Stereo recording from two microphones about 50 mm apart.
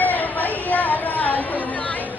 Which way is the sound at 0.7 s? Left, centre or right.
Left.